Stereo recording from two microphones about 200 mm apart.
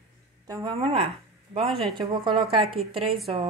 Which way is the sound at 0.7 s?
30° right (ahead or behind).